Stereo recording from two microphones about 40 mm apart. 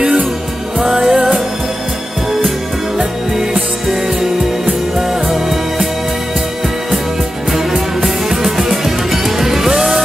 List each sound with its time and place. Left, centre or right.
0.0 s music: centre
3.8 s music: centre
7.5 s music: centre